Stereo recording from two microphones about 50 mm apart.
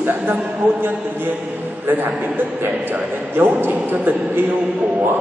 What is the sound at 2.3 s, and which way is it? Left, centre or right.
A man's voice, right.